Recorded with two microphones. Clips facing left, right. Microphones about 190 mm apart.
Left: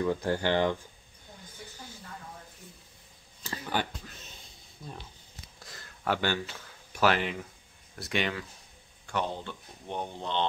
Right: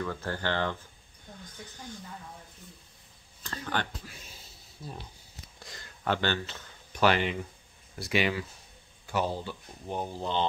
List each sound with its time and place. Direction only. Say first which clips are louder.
0.0 s speech: left 5 dB; 15° left (ahead or behind)
3.4 s speech: left 1 dB; 10° left (ahead or behind)
4.0 s a sound: even; 10° right (ahead or behind)
7.9 s speech: right 3 dB; 5° right (ahead or behind)